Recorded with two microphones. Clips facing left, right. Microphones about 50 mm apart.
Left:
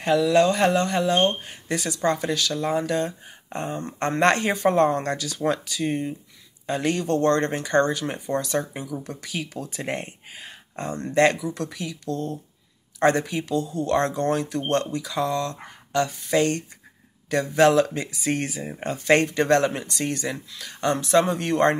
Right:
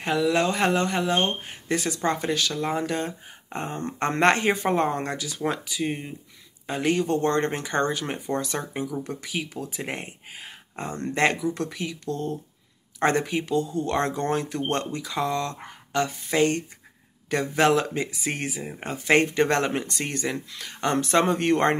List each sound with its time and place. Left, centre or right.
0.0 s speech: right
3.6 s speech: right
4.2 s speech: right
11.3 s speech: right
18.6 s speech: centre; by 21.7 s right